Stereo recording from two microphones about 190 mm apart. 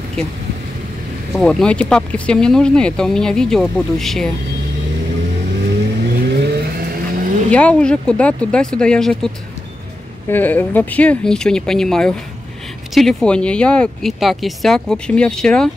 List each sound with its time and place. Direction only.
1.4 s speech: 5° left (ahead or behind)
6.0 s vehicle: 55° right (ahead or behind)
7.5 s speech: 5° left (ahead or behind)
10.3 s speech: 10° left (ahead or behind)